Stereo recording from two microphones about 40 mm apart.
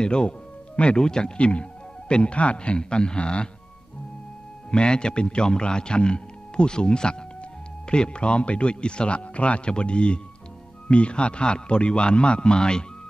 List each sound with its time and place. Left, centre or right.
0.0 s speech: left
4.6 s speech: left